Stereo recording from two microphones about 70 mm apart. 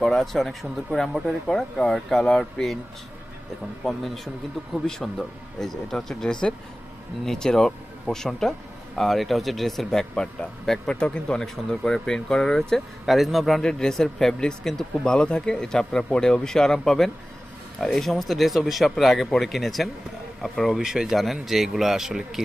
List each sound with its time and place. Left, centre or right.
0.0 s speech: centre
3.8 s speech: centre
13.6 s speech: centre